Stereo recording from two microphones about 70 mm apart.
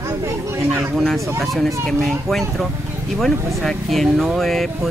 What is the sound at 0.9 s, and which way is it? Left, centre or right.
Speech, centre.